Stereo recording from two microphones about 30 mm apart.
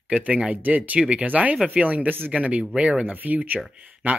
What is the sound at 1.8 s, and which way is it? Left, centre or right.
Speech, right.